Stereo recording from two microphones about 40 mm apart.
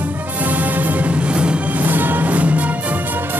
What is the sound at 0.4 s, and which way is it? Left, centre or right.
Music, right.